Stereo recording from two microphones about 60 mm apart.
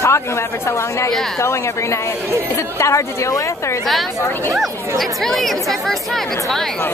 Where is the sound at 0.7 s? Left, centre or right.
Left.